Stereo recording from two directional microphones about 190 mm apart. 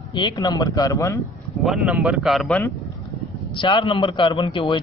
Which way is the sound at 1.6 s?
5° right (ahead or behind).